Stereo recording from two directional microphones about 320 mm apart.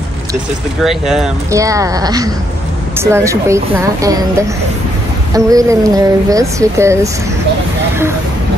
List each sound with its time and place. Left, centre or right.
0.8 s speech: centre